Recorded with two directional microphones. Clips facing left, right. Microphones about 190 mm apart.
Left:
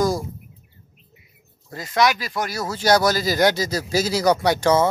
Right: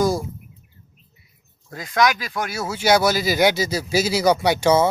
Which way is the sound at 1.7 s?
Centre (ahead or behind).